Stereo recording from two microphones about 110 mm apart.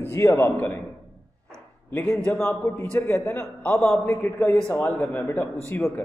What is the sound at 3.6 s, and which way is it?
Speech, 5° left (ahead or behind).